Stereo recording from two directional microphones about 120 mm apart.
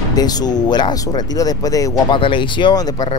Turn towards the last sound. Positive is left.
turn(degrees=30)  # may be behind; listen again after turning